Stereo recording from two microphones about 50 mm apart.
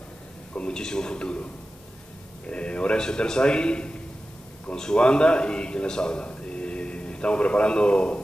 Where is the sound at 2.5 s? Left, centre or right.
Left.